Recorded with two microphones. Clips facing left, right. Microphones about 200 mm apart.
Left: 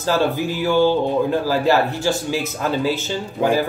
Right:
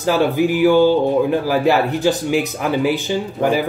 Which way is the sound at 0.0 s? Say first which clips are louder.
Right 4 dB; 15° right (ahead or behind).